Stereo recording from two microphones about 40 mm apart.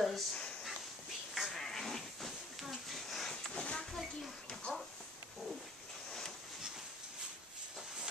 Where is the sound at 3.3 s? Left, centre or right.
Centre.